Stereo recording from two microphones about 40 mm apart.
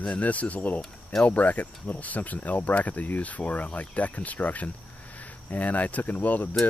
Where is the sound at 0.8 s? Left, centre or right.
Centre.